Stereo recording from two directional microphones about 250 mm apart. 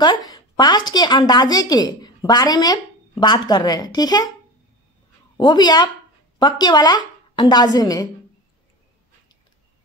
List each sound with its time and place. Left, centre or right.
0.0 s a woman's voice: centre
5.4 s a woman's voice: centre